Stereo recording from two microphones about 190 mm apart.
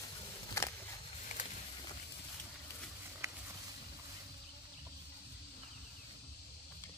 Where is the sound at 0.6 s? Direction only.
15° left (ahead or behind).